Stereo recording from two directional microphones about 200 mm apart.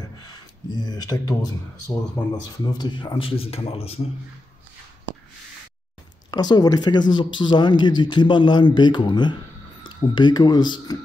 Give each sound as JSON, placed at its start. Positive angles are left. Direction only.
{"t": 0.7, "sound": "speech", "side_deg": 20}
{"t": 6.3, "sound": "speech", "side_deg": 20}